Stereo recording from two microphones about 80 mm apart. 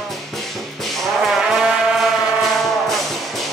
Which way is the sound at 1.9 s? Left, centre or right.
Centre.